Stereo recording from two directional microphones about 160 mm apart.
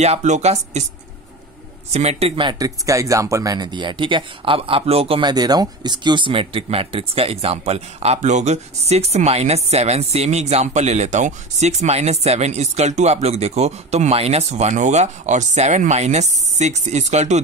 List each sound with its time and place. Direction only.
0.0 s speech: 45° right (ahead or behind)
1.9 s speech: 40° right (ahead or behind)